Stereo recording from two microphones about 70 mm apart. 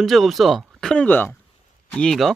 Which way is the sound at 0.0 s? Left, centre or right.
Centre.